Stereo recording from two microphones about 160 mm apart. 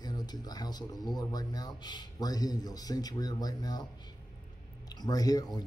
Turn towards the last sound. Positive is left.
turn(degrees=25)  # may be behind; listen again after turning